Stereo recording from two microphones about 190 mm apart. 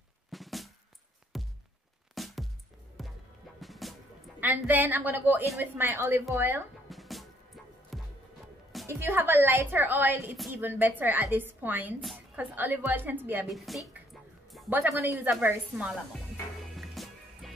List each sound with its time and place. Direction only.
0.3 s music: centre (ahead or behind)
1.3 s thunk: centre (ahead or behind)
2.1 s music: centre (ahead or behind)
4.4 s a woman's voice: 10° right (ahead or behind)
6.9 s music: centre (ahead or behind)
8.8 s a woman's voice: 15° right (ahead or behind)
16.7 s music: centre (ahead or behind)